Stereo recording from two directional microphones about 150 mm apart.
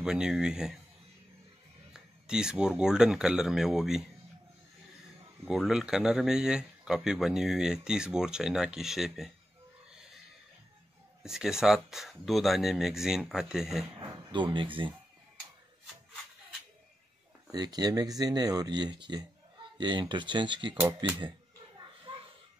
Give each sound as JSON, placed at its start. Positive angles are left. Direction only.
{"t": 0.0, "sound": "speech", "side_deg": -5}
{"t": 2.0, "sound": "speech", "side_deg": -5}
{"t": 5.4, "sound": "speech", "side_deg": 0}
{"t": 11.2, "sound": "speech", "side_deg": -5}
{"t": 13.9, "sound": "speech", "side_deg": -30}
{"t": 17.5, "sound": "speech", "side_deg": -25}